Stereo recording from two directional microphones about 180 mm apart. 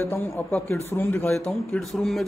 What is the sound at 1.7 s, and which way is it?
Speech, centre (ahead or behind).